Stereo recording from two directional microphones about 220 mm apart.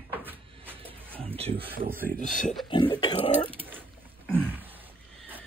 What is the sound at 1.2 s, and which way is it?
Speech, 25° right (ahead or behind).